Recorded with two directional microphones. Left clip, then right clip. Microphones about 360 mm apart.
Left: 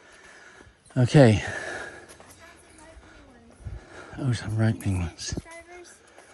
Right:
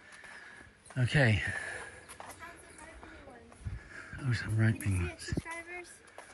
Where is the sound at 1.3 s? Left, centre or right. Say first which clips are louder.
Left 6 dB; left.